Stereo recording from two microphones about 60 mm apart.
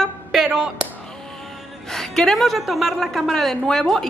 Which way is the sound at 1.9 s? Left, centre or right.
Centre.